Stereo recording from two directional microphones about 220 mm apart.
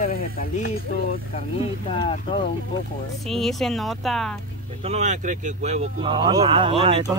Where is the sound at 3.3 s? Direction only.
Centre (ahead or behind).